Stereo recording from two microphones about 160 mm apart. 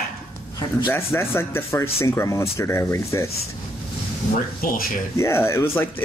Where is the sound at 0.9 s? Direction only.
15° left (ahead or behind).